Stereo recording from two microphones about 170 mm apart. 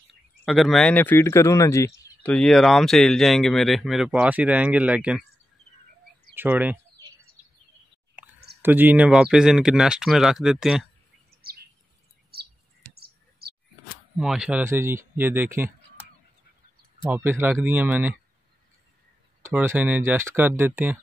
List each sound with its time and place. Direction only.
0.5 s speech: centre (ahead or behind); by 1.9 s 15° left (ahead or behind)
2.2 s speech: 5° left (ahead or behind)
6.3 s speech: 10° right (ahead or behind)
8.2 s clicking: 5° right (ahead or behind)
8.6 s speech: 10° right (ahead or behind)
12.3 s a sound: 65° right (ahead or behind)
14.1 s speech: 5° right (ahead or behind)
17.0 s speech: 10° right (ahead or behind)
19.5 s speech: 10° right (ahead or behind)